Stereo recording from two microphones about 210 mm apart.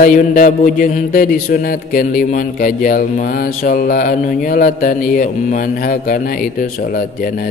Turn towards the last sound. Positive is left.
turn(degrees=40)  # may be behind; listen again after turning